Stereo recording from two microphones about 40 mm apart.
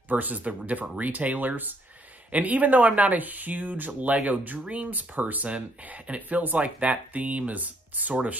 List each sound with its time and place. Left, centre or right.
0.1 s speech: right